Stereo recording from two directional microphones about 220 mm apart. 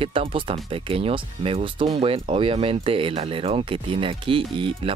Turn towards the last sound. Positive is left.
turn(degrees=-25)  # may be behind; listen again after turning